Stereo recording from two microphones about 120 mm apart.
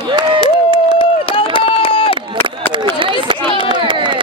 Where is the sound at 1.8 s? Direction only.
50° left (ahead or behind).